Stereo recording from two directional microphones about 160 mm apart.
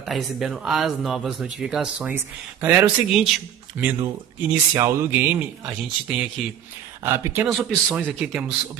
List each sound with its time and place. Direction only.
0.0 s speech: centre (ahead or behind)
7.4 s speech: centre (ahead or behind)